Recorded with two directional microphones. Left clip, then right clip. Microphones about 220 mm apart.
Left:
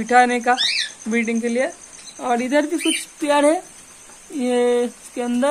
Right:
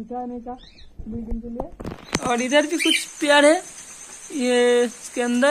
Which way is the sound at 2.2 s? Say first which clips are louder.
Left 1 dB; 10° left (ahead or behind).